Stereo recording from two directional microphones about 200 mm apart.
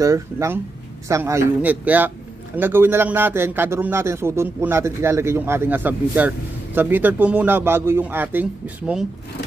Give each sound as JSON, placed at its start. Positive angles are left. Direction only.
{"t": 0.0, "sound": "a man's voice", "side_deg": -15}